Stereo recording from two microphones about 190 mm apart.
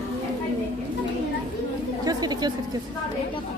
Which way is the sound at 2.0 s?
20° right (ahead or behind).